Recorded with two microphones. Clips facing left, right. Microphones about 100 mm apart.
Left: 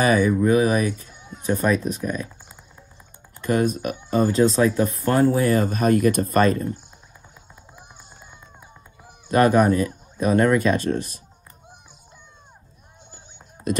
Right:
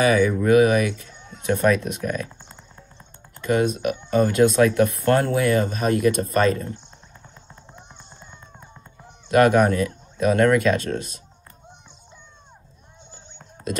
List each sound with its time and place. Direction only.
0.0 s speech: 40° left (ahead or behind)
1.2 s speech: 10° left (ahead or behind)
3.4 s speech: 45° left (ahead or behind); by 5.0 s 30° left (ahead or behind)
5.0 s speech: 15° left (ahead or behind)
5.3 s speech: 40° left (ahead or behind)
9.3 s speech: 40° left (ahead or behind)